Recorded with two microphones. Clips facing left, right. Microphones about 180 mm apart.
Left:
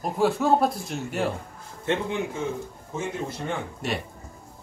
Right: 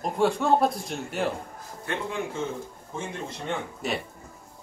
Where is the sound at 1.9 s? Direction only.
25° left (ahead or behind).